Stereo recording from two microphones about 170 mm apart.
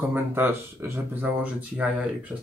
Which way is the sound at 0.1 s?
15° right (ahead or behind).